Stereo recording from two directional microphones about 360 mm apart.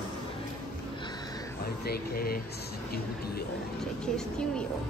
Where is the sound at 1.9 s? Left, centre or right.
Left.